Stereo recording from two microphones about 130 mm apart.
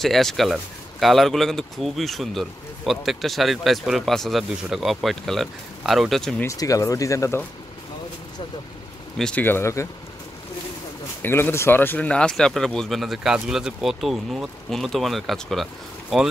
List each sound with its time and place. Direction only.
0.0 s speech: centre (ahead or behind)
6.4 s speech: 25° left (ahead or behind)
9.2 s speech: 10° left (ahead or behind)
11.2 s speech: 15° left (ahead or behind); by 16.3 s centre (ahead or behind)